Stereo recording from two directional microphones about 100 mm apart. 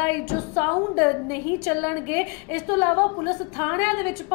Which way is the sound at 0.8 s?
30° left (ahead or behind).